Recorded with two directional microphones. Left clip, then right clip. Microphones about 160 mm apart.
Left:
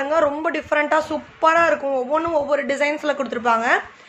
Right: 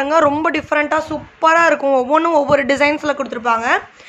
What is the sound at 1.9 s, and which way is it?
A man's voice, 45° right (ahead or behind).